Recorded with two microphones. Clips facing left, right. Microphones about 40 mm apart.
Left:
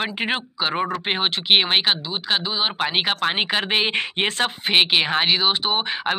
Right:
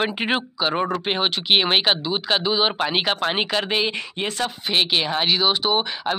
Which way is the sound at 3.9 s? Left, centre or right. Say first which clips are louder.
Left 4 dB; left.